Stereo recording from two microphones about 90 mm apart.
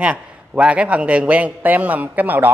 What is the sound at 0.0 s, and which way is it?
A man's voice, 15° right (ahead or behind).